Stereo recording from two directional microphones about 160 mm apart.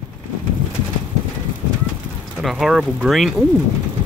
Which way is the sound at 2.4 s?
Centre (ahead or behind).